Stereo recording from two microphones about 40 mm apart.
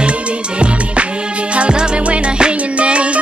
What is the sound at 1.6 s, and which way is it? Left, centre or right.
Music, right.